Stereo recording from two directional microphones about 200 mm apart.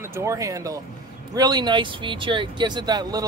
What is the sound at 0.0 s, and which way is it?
Speech, 15° right (ahead or behind).